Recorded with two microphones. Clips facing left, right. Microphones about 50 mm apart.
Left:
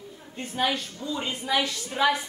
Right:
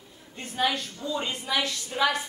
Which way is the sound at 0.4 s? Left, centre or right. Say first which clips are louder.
Even; centre.